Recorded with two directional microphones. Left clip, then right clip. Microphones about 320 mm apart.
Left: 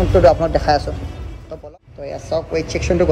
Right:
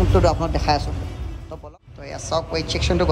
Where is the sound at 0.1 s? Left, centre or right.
Centre.